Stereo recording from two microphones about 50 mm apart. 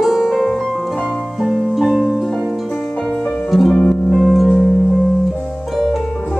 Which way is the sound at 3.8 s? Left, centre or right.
Left.